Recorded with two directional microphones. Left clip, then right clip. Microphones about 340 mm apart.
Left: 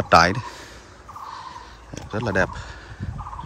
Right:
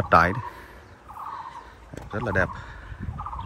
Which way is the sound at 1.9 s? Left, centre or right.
Centre.